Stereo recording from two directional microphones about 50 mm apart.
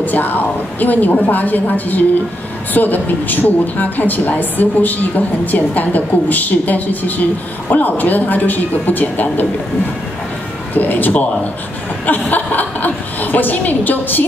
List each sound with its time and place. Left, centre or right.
0.0 s a woman's voice: left
10.7 s a woman's voice: left